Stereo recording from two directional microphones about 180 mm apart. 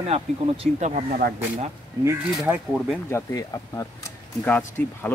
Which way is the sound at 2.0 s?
10° right (ahead or behind).